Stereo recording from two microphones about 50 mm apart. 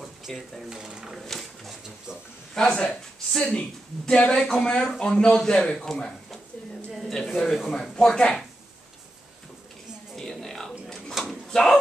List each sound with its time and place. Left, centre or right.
0.3 s speech: centre
0.7 s speech: centre
1.2 s dog: centre
2.5 s speech: centre
6.9 s a sound: centre
7.6 s speech: centre
10.1 s a sound: centre